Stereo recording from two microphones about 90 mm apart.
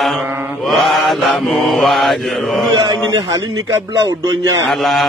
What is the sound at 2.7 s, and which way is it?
Speech, 50° right (ahead or behind).